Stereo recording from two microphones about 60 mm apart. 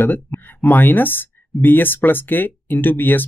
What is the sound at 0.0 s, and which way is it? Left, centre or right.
Speech, left.